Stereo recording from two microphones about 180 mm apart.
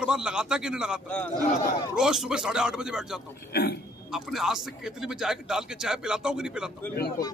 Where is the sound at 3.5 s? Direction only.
60° left (ahead or behind).